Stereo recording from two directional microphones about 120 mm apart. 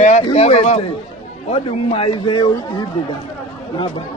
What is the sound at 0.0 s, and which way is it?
Speech, 65° left (ahead or behind).